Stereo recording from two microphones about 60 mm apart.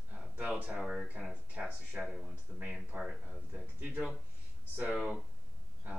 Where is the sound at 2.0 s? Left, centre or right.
Centre.